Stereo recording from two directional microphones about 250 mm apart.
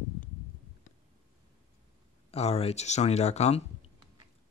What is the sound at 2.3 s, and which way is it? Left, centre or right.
Speech, left.